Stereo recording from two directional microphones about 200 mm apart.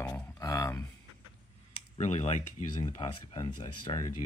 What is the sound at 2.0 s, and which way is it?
Speech, 35° left (ahead or behind).